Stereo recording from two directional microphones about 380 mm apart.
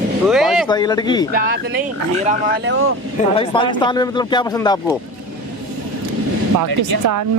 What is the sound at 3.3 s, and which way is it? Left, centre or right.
Speech, centre.